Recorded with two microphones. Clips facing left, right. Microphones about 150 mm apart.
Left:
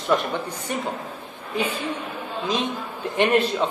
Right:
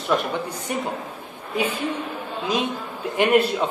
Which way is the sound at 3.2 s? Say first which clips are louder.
Right 1 dB; 10° right (ahead or behind).